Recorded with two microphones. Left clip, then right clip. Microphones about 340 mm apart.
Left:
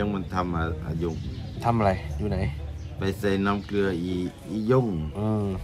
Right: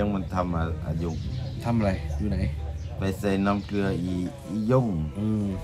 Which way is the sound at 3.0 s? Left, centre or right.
Centre.